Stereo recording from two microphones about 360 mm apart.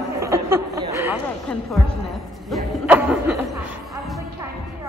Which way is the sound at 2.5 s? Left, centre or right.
Centre.